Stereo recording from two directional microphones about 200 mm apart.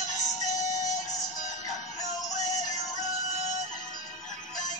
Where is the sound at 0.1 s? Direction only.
20° left (ahead or behind).